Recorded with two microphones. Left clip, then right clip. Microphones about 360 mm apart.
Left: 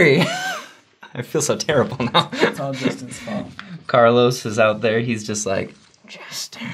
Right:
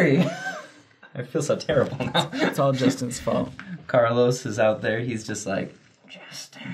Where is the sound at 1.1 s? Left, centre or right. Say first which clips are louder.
Left 4 dB; left.